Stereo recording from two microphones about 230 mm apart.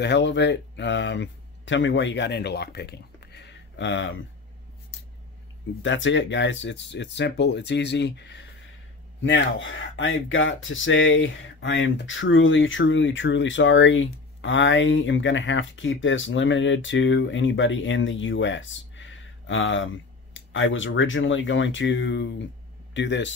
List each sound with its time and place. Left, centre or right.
0.0 s speech: left
5.8 s speech: left